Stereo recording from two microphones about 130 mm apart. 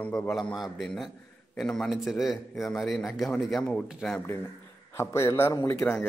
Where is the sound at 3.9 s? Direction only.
5° right (ahead or behind).